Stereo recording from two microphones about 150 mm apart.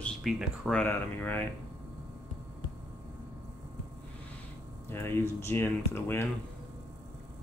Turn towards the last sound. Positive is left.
turn(degrees=15)  # may be behind; listen again after turning